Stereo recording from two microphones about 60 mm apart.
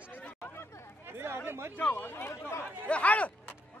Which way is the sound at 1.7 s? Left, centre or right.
Left.